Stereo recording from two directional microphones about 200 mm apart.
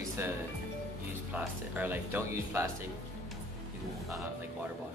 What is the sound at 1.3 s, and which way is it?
Speech, 10° right (ahead or behind).